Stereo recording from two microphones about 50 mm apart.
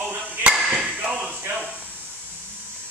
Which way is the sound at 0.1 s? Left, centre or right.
Right.